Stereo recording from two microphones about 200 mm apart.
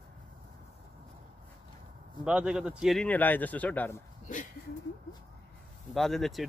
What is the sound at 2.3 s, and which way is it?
Speech, 5° right (ahead or behind).